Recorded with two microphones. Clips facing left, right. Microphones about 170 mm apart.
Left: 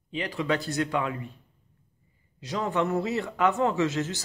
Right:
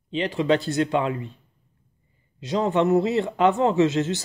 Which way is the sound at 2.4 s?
25° right (ahead or behind).